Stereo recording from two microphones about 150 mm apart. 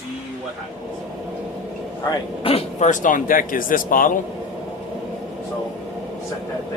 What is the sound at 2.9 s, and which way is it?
Speech, 60° left (ahead or behind).